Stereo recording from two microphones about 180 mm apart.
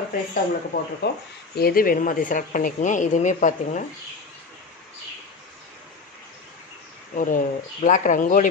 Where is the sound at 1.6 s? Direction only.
55° left (ahead or behind).